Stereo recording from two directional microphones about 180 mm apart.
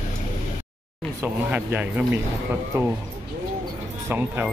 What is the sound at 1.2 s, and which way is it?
Speech, 10° right (ahead or behind).